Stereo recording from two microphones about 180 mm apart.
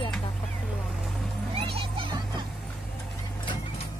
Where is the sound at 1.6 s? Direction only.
30° right (ahead or behind).